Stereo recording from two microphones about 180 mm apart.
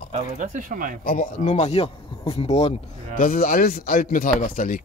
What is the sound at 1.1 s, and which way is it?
A man's voice, 45° left (ahead or behind).